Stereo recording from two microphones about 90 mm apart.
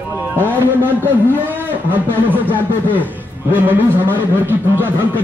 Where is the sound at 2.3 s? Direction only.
20° right (ahead or behind).